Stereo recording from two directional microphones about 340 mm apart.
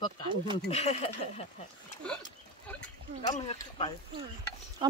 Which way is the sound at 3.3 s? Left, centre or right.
Centre.